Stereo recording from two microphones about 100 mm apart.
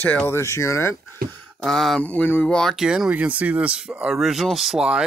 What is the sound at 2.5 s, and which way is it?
Speech, centre (ahead or behind).